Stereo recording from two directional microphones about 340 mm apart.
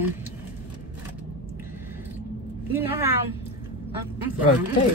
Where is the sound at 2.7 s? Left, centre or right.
Centre.